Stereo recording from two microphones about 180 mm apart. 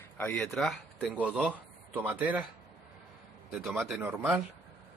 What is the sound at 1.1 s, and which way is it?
Speech, 10° right (ahead or behind).